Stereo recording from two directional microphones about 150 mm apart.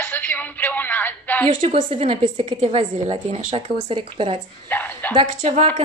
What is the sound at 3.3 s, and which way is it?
Speech, 50° right (ahead or behind).